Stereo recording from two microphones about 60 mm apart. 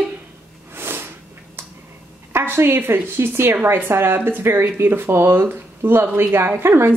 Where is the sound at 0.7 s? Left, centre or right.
Right.